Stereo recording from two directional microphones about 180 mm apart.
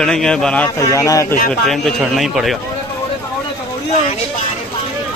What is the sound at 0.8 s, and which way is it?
Speech, 20° left (ahead or behind).